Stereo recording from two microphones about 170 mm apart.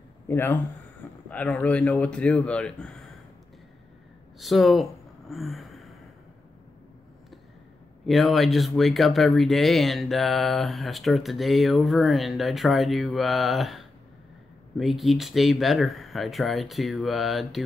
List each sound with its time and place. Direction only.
0.3 s speech: 10° left (ahead or behind)
4.4 s speech: centre (ahead or behind)
5.3 s a sound: centre (ahead or behind)
8.1 s speech: centre (ahead or behind)